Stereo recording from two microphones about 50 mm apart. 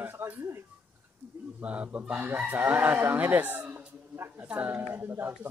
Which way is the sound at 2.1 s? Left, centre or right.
Right.